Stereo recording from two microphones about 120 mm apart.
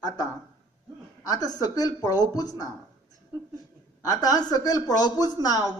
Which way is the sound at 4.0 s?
30° left (ahead or behind).